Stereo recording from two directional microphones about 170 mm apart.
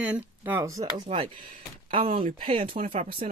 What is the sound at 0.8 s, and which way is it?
Speech, 30° right (ahead or behind).